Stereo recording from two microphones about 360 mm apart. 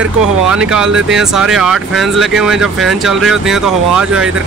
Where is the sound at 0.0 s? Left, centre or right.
Centre.